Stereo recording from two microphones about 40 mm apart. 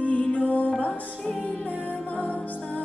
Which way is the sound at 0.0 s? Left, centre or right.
Left.